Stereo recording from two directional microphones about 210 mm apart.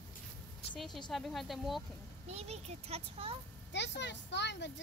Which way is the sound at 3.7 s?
55° left (ahead or behind).